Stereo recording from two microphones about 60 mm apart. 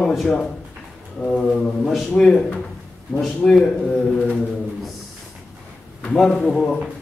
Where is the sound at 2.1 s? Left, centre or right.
Centre.